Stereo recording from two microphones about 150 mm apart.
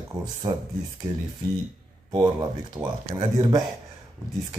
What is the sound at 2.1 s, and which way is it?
Speech, 30° right (ahead or behind).